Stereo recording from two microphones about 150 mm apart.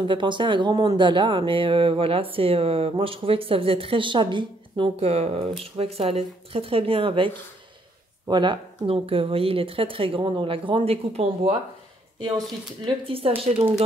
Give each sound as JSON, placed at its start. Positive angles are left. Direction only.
{"t": 0.0, "sound": "speech", "side_deg": -30}
{"t": 12.2, "sound": "speech", "side_deg": -30}